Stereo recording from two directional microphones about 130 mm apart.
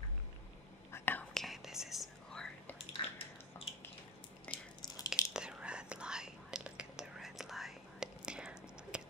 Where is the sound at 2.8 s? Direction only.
45° left (ahead or behind).